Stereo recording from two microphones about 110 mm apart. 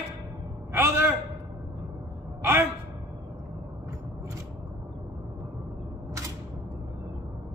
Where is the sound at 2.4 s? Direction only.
20° right (ahead or behind).